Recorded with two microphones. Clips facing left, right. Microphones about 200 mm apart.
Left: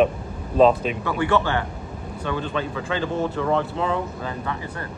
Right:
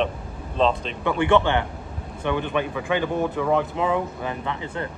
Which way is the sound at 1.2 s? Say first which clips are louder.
Right 2 dB; 20° right (ahead or behind).